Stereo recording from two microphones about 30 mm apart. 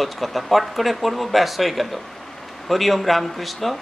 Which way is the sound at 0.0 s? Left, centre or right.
Centre.